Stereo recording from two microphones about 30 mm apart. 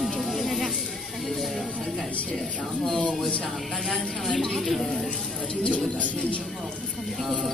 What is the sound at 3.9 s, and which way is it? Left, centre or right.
Speech, centre.